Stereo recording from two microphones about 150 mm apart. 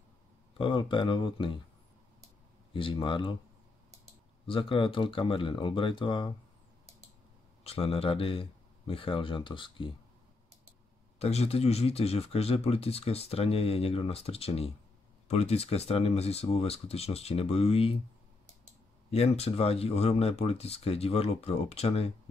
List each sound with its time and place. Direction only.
0.6 s speech: 35° left (ahead or behind)
2.7 s speech: 35° left (ahead or behind)
4.5 s speech: 35° left (ahead or behind)
7.6 s speech: 40° left (ahead or behind)
11.1 s speech: 45° left (ahead or behind)
19.0 s speech: 45° left (ahead or behind)